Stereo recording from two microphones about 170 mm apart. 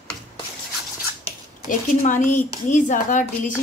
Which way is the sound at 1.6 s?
50° left (ahead or behind).